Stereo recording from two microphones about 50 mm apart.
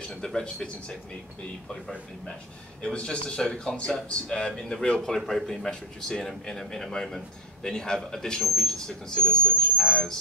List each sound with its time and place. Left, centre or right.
0.0 s a man's voice: centre
5.1 s speech: centre